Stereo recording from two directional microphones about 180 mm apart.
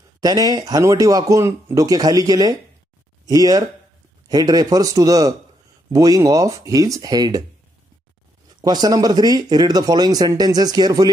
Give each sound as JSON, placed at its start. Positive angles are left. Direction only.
{"t": 0.2, "sound": "speech", "side_deg": -20}
{"t": 8.5, "sound": "speech", "side_deg": -20}